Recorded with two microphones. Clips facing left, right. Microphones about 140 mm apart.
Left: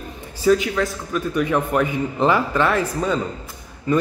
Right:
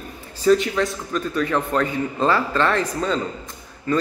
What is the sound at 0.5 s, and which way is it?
A man's voice, centre (ahead or behind).